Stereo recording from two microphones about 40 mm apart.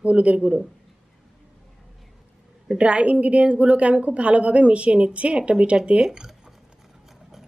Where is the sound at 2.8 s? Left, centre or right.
Right.